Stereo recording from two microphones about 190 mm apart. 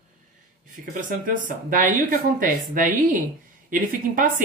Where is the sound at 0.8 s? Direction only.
45° right (ahead or behind).